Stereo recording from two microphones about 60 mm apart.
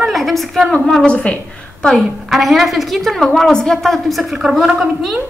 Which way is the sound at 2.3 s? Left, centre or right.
Centre.